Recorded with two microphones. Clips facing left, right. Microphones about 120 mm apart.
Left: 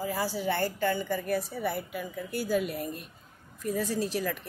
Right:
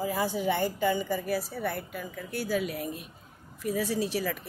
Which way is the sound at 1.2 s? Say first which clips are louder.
Left 1 dB; centre (ahead or behind).